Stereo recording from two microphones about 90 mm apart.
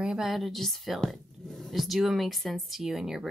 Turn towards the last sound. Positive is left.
turn(degrees=-5)  # may be behind; listen again after turning